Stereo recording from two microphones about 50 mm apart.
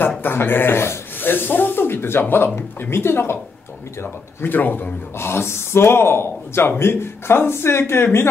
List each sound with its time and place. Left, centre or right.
0.2 s a man's voice: left
1.3 s speech: left
5.2 s speech: left